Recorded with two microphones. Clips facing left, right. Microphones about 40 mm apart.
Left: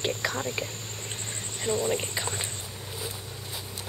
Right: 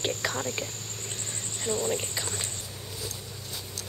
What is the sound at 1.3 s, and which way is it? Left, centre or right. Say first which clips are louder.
Speech: left 2 dB; centre.